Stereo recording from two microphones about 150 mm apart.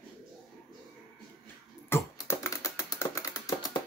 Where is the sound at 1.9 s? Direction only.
20° left (ahead or behind).